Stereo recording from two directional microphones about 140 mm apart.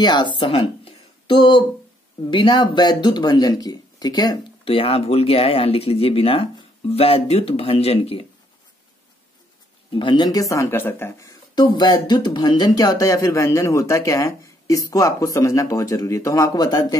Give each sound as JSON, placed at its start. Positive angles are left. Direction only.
{"t": 0.0, "sound": "speech", "side_deg": 30}
{"t": 0.5, "sound": "a sound", "side_deg": 40}
{"t": 2.3, "sound": "speech", "side_deg": 35}
{"t": 4.6, "sound": "speech", "side_deg": 40}
{"t": 9.9, "sound": "speech", "side_deg": 35}
{"t": 11.5, "sound": "speech", "side_deg": 30}